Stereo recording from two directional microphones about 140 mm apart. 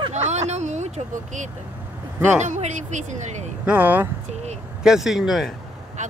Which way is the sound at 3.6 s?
10° right (ahead or behind).